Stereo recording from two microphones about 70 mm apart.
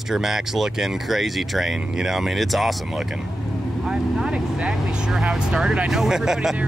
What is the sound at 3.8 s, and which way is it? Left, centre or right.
Vehicle, centre.